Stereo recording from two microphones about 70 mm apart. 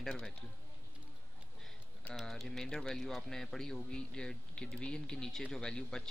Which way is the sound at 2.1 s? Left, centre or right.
Centre.